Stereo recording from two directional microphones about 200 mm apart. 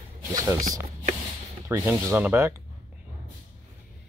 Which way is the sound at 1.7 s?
15° right (ahead or behind).